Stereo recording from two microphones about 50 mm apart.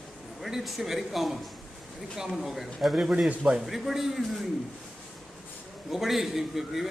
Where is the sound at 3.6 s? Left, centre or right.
Centre.